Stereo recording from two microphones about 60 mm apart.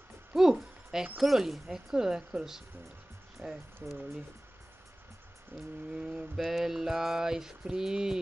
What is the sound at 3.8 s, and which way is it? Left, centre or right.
Speech, right.